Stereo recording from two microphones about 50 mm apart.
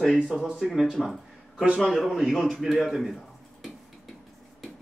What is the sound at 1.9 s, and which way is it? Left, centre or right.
A man's voice, centre.